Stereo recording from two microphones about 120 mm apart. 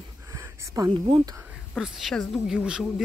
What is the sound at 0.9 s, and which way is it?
Speech, 45° right (ahead or behind).